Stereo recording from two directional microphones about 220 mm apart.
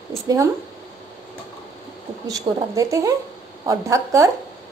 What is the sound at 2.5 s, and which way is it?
A woman's voice, 20° right (ahead or behind).